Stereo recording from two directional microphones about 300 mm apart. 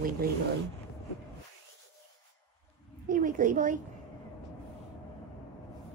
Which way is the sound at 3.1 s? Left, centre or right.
Right.